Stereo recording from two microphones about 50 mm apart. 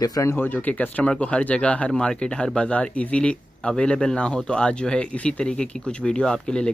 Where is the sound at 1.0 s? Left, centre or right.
Left.